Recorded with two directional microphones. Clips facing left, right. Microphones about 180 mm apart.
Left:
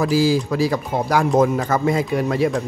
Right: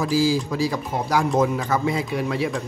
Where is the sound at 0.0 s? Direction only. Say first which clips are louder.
Left 3 dB; 65° left (ahead or behind).